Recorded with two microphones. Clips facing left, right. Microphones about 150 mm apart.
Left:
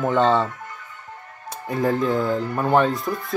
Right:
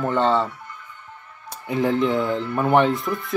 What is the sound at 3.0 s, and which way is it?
Speech, 55° left (ahead or behind).